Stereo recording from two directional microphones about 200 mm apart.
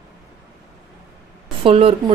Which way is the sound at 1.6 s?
25° right (ahead or behind).